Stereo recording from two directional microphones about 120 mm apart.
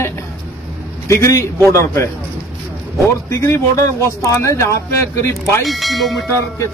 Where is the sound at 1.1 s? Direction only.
25° left (ahead or behind).